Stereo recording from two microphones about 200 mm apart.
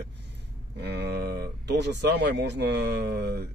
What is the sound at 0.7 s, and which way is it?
Speech, 55° right (ahead or behind).